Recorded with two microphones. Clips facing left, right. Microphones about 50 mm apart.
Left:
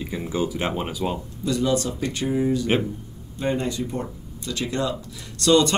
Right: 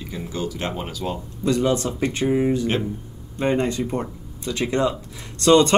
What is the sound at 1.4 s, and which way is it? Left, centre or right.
Speech, right.